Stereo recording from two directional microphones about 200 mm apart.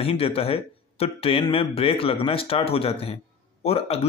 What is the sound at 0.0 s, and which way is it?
Speech, 30° left (ahead or behind).